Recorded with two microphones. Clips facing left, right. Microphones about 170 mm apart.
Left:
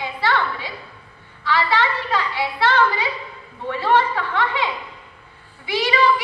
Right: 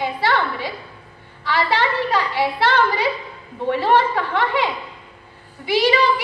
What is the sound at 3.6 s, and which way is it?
Speech, 40° right (ahead or behind).